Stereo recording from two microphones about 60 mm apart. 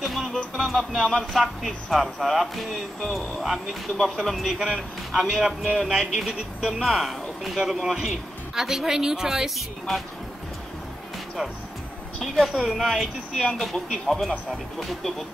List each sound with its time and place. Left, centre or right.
0.0 s music: centre
0.6 s speech: centre
4.6 s speech: centre
5.1 s speech: centre
12.2 s speech: centre